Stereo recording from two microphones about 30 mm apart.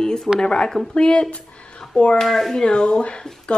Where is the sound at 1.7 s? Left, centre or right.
Left.